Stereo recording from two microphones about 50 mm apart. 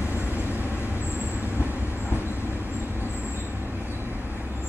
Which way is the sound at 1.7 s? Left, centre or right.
Left.